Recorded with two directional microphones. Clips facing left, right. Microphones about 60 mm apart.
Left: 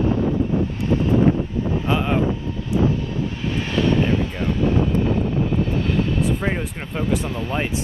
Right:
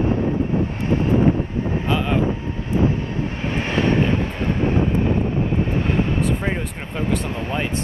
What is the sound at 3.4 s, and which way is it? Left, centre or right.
Vehicle, right.